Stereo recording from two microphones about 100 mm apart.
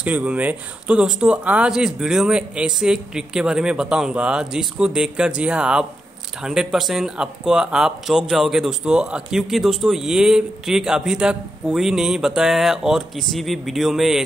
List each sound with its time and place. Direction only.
0.0 s speech: 15° right (ahead or behind)